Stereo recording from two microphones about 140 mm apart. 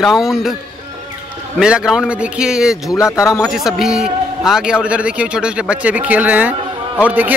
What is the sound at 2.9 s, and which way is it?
Speech, 20° left (ahead or behind).